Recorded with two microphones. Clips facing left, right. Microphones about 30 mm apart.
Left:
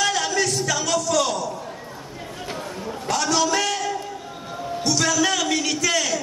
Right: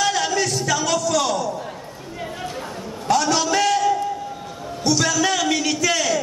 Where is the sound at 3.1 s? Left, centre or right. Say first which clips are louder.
Right 3 dB; centre.